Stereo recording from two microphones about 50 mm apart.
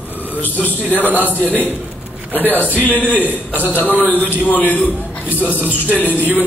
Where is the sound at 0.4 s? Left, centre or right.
Left.